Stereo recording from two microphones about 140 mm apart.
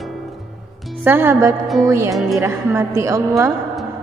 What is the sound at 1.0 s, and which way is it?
A woman's voice, 15° right (ahead or behind).